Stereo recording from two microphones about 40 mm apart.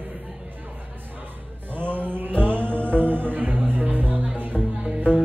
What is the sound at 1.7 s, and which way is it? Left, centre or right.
Music, right.